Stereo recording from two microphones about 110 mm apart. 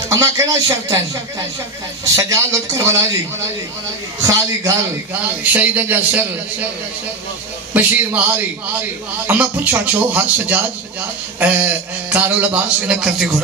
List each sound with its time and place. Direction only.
0.1 s a man's voice: 30° right (ahead or behind)
2.0 s a man's voice: 30° right (ahead or behind)
4.2 s a man's voice: 30° right (ahead or behind)
5.4 s a man's voice: 15° right (ahead or behind)
7.7 s a man's voice: 15° right (ahead or behind)